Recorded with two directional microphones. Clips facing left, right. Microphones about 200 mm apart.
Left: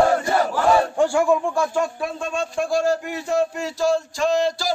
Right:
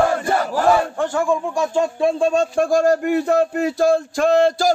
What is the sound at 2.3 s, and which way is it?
Speech, 45° right (ahead or behind).